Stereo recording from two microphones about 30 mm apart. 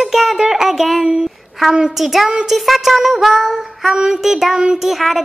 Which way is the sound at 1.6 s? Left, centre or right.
Centre.